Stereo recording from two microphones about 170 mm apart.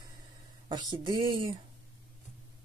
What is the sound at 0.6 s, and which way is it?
Speech, 25° right (ahead or behind).